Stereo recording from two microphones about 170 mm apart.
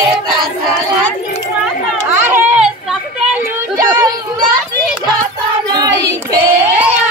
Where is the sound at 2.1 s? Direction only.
10° right (ahead or behind).